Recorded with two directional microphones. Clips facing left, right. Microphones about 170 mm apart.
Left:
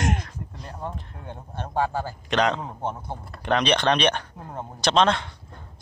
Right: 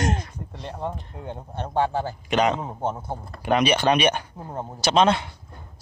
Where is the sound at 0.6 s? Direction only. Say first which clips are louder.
Right 5 dB; 30° right (ahead or behind).